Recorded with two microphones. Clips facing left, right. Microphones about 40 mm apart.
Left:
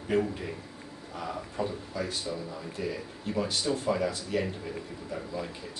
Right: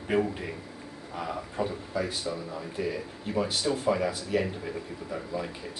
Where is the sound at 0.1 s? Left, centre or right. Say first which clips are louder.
Right 1 dB; centre.